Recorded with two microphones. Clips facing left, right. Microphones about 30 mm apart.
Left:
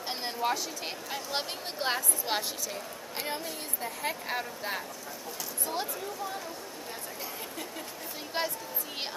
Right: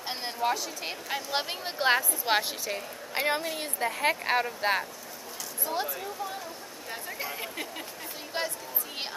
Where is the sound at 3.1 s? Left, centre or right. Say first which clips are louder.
Right 8 dB; right.